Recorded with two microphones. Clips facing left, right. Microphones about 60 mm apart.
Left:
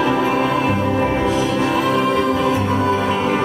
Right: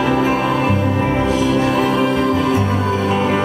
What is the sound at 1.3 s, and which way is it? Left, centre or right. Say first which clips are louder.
Music: right 2 dB; right.